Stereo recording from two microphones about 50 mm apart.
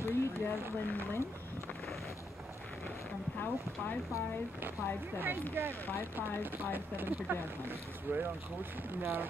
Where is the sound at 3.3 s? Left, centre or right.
Left.